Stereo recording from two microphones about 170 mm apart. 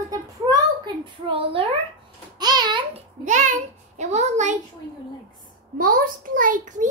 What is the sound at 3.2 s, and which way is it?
A child's voice, 45° right (ahead or behind).